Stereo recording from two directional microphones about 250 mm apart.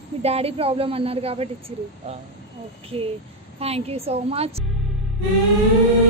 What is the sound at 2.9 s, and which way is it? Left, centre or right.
A woman's voice, right.